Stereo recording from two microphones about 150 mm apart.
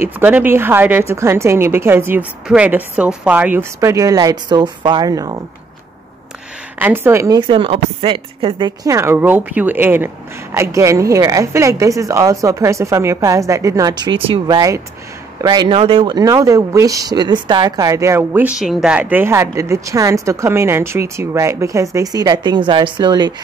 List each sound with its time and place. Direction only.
0.0 s a woman's voice: 10° right (ahead or behind)
6.8 s a woman's voice: 15° right (ahead or behind)
7.3 s speech: 35° right (ahead or behind)
16.2 s speech: 20° right (ahead or behind)